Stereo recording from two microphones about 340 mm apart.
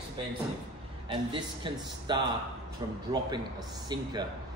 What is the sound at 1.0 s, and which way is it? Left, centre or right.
A man's voice, centre.